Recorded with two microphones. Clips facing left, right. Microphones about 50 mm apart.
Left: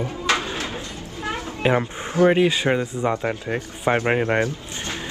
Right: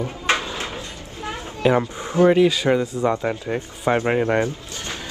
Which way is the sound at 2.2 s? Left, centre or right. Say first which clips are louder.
Right 1 dB; left.